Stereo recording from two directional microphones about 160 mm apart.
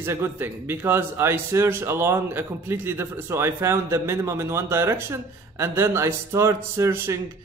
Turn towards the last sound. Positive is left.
turn(degrees=-20)  # may be behind; listen again after turning